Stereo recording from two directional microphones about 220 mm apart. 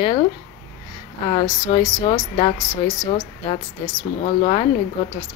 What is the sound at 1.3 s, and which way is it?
Speech, 20° left (ahead or behind).